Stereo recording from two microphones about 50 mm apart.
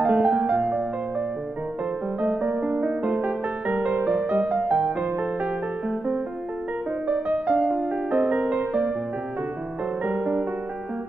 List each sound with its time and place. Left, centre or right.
0.0 s music: right
2.4 s music: right
7.1 s music: right
10.0 s music: right